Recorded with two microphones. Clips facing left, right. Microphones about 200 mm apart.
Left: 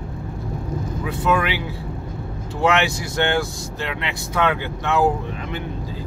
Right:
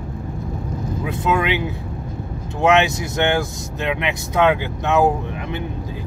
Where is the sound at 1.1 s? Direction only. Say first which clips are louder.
Right 1 dB; 20° right (ahead or behind).